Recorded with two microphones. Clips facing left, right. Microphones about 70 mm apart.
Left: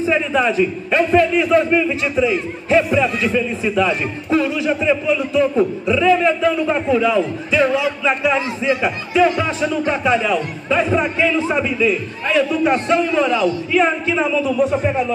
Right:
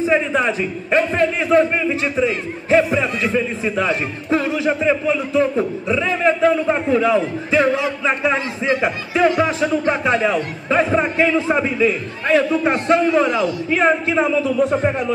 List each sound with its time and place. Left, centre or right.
0.0 s a man's voice: right